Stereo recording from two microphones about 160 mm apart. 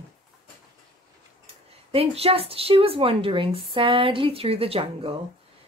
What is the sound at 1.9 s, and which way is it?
Speech, 40° right (ahead or behind).